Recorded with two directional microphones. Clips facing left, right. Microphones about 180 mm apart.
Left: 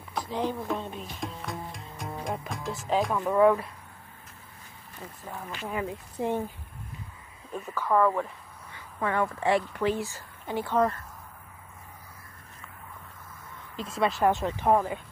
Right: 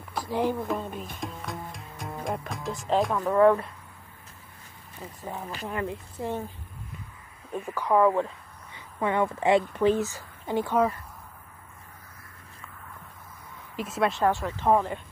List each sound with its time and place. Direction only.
0.3 s speech: 15° right (ahead or behind)
0.6 s speech: 5° right (ahead or behind)
1.2 s music: centre (ahead or behind)
3.3 s speech: 10° left (ahead or behind)
5.2 s speech: 15° right (ahead or behind)
5.7 s speech: 5° left (ahead or behind)
6.1 s speech: 15° left (ahead or behind)
7.5 s a woman's voice: 10° right (ahead or behind)
13.8 s speech: centre (ahead or behind)
14.2 s speech: 15° left (ahead or behind)
14.7 s speech: 5° left (ahead or behind)